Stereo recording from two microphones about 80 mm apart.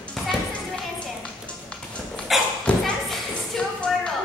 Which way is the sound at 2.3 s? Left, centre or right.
Centre.